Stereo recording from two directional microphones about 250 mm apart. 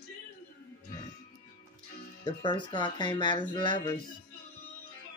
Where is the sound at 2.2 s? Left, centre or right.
Centre.